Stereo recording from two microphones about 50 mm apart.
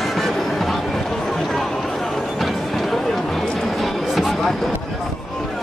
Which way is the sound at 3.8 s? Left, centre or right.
Centre.